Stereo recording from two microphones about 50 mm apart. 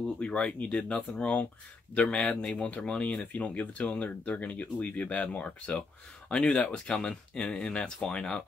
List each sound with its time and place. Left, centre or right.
0.0 s speech: left
2.0 s speech: centre